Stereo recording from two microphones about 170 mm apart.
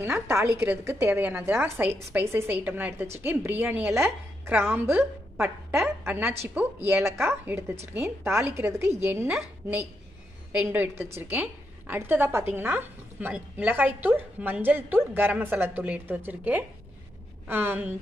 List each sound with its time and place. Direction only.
0.0 s a woman's voice: 15° right (ahead or behind)